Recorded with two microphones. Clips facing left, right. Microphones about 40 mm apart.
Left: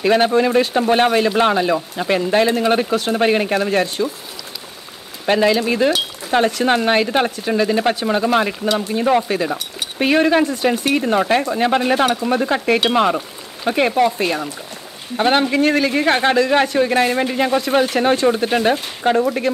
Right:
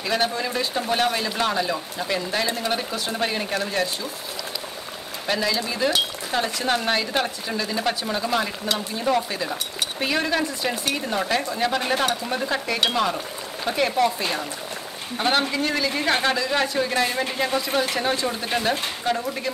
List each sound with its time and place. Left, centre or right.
0.0 s speech: left
5.2 s speech: left
15.1 s speech: left